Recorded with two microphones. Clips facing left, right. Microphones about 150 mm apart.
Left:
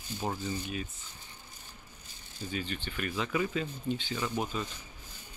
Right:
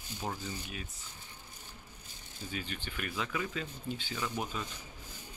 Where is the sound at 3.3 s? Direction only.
10° left (ahead or behind).